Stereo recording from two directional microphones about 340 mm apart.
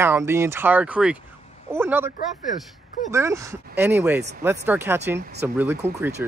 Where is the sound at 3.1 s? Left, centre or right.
Centre.